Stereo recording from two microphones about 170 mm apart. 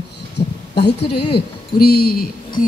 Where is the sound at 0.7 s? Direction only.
75° left (ahead or behind).